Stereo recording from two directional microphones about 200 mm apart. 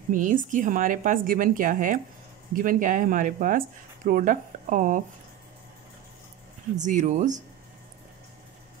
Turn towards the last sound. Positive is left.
turn(degrees=-40)  # may be behind; listen again after turning